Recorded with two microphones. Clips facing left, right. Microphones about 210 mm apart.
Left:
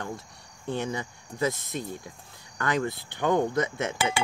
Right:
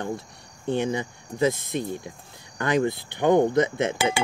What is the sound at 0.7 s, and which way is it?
Speech, 25° right (ahead or behind).